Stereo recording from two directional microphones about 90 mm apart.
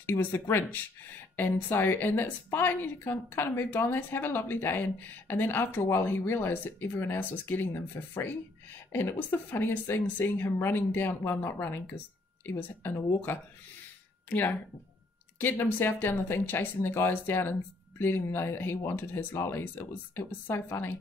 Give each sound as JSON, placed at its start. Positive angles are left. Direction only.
{"t": 0.0, "sound": "speech", "side_deg": 25}
{"t": 15.3, "sound": "speech", "side_deg": 20}